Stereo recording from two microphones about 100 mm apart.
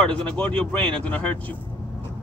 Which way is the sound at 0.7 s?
60° right (ahead or behind).